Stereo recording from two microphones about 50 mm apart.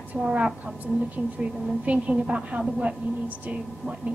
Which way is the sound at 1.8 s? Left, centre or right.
Right.